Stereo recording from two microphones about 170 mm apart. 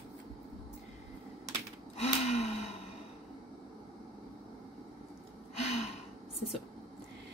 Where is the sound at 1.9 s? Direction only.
40° left (ahead or behind).